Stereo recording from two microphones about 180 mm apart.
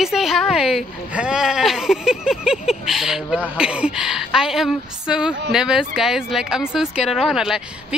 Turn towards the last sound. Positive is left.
turn(degrees=0)  # may be behind; listen again after turning